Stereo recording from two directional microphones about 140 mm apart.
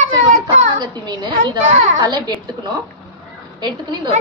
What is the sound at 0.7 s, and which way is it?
A woman's voice, 30° right (ahead or behind).